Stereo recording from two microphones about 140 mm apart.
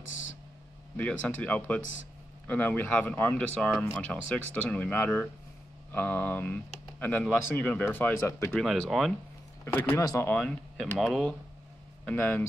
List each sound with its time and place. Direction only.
0.9 s speech: 10° left (ahead or behind)
8.5 s speech: 5° left (ahead or behind)